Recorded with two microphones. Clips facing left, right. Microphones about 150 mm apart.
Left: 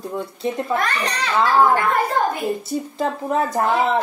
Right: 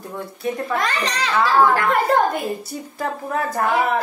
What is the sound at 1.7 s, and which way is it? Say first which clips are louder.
Speech: right 1 dB; 80° right.